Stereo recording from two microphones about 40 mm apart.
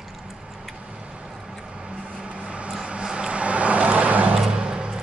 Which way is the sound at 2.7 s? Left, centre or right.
Centre.